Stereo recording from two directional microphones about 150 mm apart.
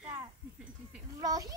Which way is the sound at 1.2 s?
25° right (ahead or behind).